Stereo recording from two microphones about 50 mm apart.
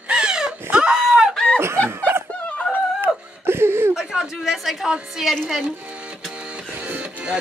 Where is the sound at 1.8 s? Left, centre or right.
Right.